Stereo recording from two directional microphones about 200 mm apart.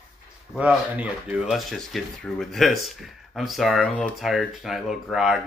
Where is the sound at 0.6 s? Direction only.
5° right (ahead or behind).